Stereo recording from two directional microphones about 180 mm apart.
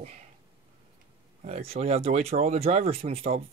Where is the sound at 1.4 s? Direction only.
35° right (ahead or behind).